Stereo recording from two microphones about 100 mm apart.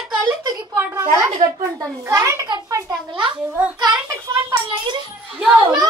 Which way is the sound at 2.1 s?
30° right (ahead or behind).